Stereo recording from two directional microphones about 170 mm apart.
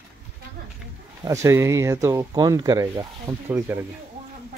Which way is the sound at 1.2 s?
15° right (ahead or behind).